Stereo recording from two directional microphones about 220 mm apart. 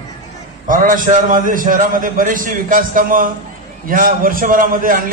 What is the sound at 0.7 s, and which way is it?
A man's voice, 40° right (ahead or behind).